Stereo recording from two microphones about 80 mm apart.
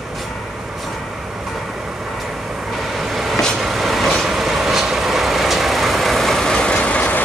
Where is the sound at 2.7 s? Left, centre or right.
Centre.